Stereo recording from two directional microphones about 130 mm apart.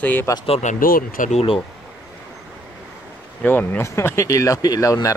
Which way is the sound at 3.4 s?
15° left (ahead or behind).